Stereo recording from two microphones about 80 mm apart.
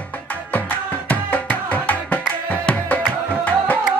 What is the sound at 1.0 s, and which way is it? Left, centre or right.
Music, centre.